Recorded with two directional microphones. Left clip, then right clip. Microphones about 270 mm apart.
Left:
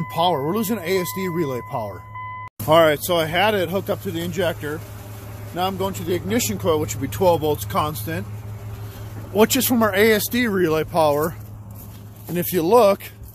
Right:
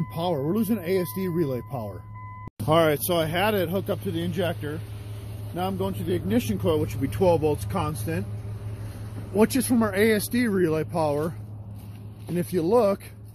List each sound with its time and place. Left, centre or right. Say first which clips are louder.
0.1 s speech: left 7 dB; centre
9.3 s speech: left 5 dB; centre
12.4 s speech: left 6 dB; centre